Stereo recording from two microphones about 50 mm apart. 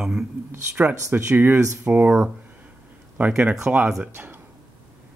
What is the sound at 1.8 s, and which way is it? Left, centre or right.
Speech, right.